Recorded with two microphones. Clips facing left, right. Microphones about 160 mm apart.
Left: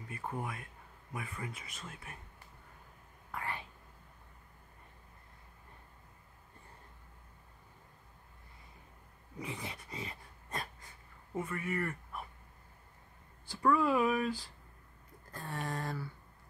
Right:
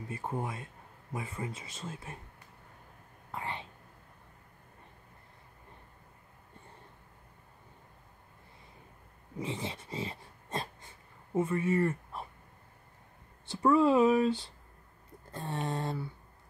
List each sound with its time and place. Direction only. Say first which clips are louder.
0.1 s speech: right 3 dB; 25° right (ahead or behind)
3.3 s whispering: right 2 dB; 25° right (ahead or behind)
9.4 s dog: right 6 dB; 25° right (ahead or behind)
13.5 s speech: right 5 dB; 25° right (ahead or behind)